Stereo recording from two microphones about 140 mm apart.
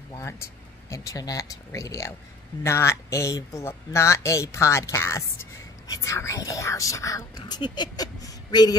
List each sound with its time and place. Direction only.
0.1 s speech: 20° left (ahead or behind)